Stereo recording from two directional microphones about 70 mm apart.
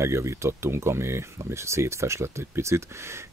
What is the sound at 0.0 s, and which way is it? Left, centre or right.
Speech, right.